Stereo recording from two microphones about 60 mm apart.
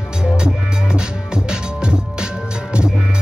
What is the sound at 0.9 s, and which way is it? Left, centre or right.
Music, centre.